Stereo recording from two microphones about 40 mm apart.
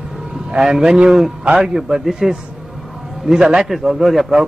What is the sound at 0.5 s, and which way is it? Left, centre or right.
Speech, centre.